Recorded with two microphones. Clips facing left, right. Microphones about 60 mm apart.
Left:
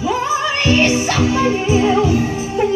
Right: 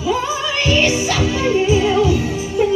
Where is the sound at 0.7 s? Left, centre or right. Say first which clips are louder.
Left 1 dB; left.